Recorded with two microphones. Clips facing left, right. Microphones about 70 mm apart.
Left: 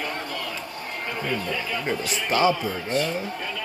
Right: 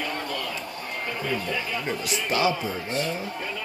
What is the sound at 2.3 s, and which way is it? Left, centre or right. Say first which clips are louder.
Speech: left 3 dB; left.